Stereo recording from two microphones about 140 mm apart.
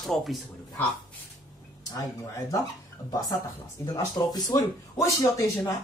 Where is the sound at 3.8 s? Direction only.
25° left (ahead or behind).